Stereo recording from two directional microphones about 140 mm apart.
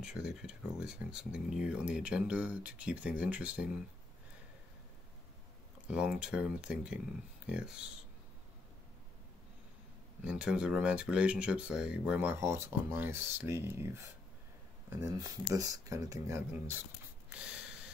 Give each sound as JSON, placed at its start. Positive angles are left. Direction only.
{"t": 0.0, "sound": "speech", "side_deg": -5}
{"t": 5.9, "sound": "speech", "side_deg": -5}
{"t": 10.2, "sound": "speech", "side_deg": -5}
{"t": 17.3, "sound": "a sound", "side_deg": -5}